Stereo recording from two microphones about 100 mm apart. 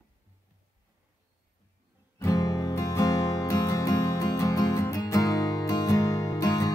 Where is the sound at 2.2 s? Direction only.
35° left (ahead or behind).